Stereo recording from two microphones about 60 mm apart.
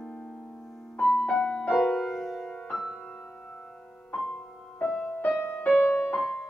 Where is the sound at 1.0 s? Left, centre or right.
Centre.